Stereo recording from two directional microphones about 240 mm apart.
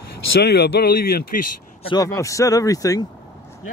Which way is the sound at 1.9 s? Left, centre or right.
Centre.